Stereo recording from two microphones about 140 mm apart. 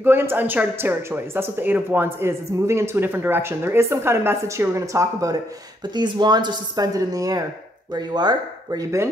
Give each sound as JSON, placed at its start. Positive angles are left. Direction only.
{"t": 0.0, "sound": "speech", "side_deg": -15}